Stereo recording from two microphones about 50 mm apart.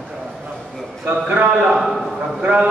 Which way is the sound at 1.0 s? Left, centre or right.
Right.